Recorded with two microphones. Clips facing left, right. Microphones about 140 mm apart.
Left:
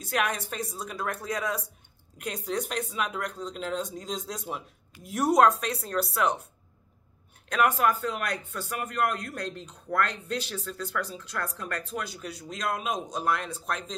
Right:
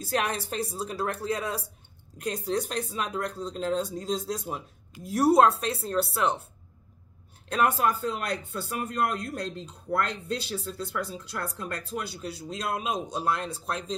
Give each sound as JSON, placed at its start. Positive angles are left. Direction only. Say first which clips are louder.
{"t": 0.0, "sound": "speech", "louder": "right 1 dB", "side_deg": -30}
{"t": 7.4, "sound": "speech", "louder": "even", "side_deg": -35}